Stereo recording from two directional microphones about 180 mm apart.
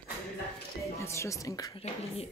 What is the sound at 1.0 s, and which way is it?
Speech, 15° left (ahead or behind).